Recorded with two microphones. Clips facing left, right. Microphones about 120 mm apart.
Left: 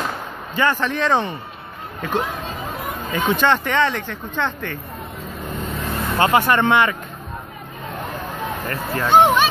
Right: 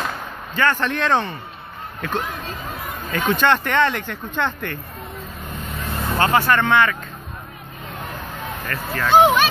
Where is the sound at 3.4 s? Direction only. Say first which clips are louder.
Right 1 dB; centre (ahead or behind).